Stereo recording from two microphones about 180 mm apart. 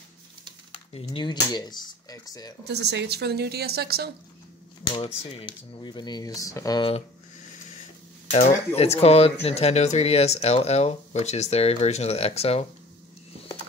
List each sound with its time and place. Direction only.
0.7 s speech: 30° left (ahead or behind)
2.6 s a woman's voice: 70° right (ahead or behind)
4.9 s speech: 30° left (ahead or behind)
8.3 s speech: 35° left (ahead or behind)